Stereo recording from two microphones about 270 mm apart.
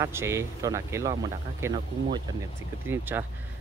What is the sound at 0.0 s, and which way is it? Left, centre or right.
Speech, centre.